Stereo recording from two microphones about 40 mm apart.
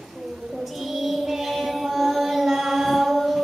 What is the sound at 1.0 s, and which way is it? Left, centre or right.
Chant, centre.